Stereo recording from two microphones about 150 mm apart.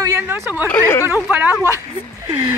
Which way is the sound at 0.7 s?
15° left (ahead or behind).